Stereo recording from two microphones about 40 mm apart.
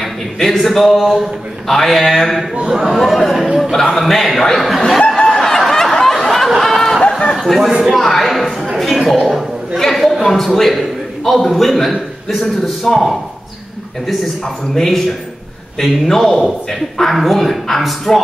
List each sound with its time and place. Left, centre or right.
0.0 s a man's voice: centre
1.7 s a man's voice: centre
3.7 s a man's voice: centre
5.0 s snicker: left
5.4 s a sound: centre
7.0 s a sound: left
7.3 s a man's voice: centre
9.8 s chatter: centre
10.2 s a man's voice: centre
14.8 s a man's voice: centre